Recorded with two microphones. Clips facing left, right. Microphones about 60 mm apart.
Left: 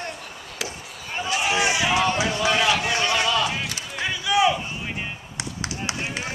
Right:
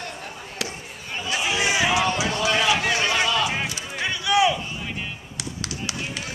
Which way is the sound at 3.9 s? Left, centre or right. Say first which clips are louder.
Right 1 dB; centre.